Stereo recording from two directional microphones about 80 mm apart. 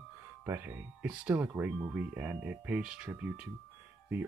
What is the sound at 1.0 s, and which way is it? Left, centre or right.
Speech, centre.